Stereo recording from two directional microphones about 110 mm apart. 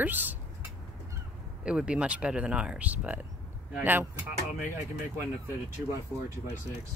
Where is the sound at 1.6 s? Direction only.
10° right (ahead or behind).